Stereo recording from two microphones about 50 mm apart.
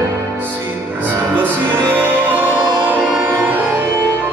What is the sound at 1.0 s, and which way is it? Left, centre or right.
Music, right.